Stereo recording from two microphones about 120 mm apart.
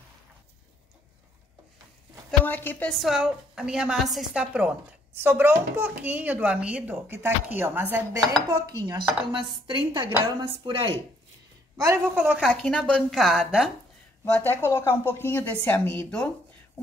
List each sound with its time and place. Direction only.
2.4 s a woman's voice: 15° left (ahead or behind)
2.9 s a woman's voice: centre (ahead or behind); by 8.2 s 15° right (ahead or behind)
8.4 s dishes: 35° right (ahead or behind)
10.4 s speech: 45° right (ahead or behind)
11.7 s a woman's voice: 25° right (ahead or behind)
12.4 s a woman's voice: 5° left (ahead or behind)
14.3 s a woman's voice: 15° left (ahead or behind)